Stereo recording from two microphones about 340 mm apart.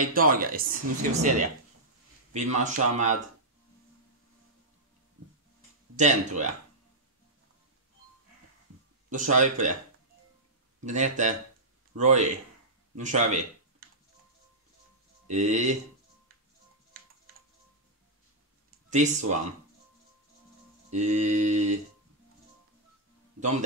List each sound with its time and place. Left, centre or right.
0.0 s mantra: right
5.9 s mantra: right
9.1 s mantra: right
10.9 s mantra: right
12.9 s speech: right
15.2 s mantra: right
18.9 s mantra: right
20.9 s mantra: right